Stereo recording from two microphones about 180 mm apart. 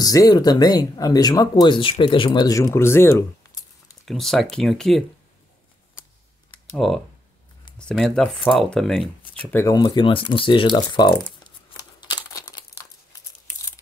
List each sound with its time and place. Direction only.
0.0 s speech: 20° left (ahead or behind)
4.0 s speech: centre (ahead or behind)
6.8 s speech: centre (ahead or behind); by 11.1 s 25° left (ahead or behind)
12.0 s crumpling: 25° left (ahead or behind)